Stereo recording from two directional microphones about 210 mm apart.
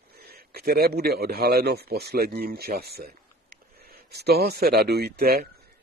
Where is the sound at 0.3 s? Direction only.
45° right (ahead or behind).